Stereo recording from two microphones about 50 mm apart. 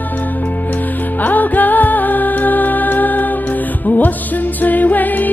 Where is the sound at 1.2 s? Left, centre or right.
Left.